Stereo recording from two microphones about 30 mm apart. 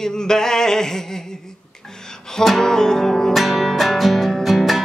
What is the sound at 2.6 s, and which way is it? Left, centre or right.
Music, centre.